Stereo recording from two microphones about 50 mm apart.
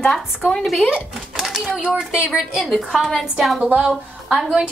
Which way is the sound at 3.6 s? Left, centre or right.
Right.